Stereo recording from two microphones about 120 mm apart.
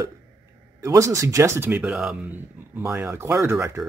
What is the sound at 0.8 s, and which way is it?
Speech, 25° right (ahead or behind).